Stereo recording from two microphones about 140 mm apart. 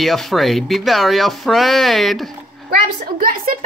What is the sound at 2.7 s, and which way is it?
Speech, 90° right.